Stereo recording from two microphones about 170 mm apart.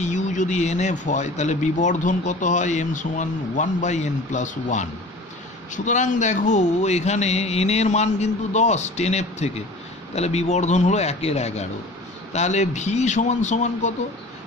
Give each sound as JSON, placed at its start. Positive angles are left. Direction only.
{"t": 0.0, "sound": "speech", "side_deg": 45}
{"t": 5.9, "sound": "speech", "side_deg": 45}